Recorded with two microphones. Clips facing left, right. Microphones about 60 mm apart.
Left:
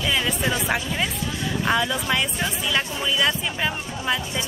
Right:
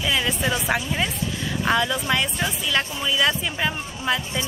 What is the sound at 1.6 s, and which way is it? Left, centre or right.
Speech, centre.